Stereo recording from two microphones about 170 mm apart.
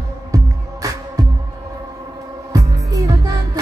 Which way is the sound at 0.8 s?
20° right (ahead or behind).